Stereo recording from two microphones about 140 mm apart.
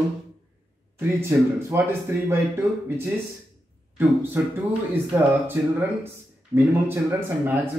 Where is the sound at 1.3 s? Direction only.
15° right (ahead or behind).